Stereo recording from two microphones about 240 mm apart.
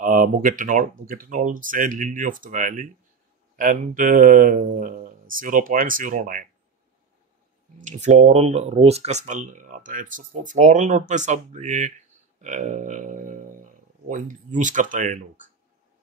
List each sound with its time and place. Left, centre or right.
0.0 s speech: right
7.8 s speech: right